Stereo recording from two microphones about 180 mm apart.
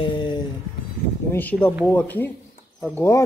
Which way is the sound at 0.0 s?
25° left (ahead or behind).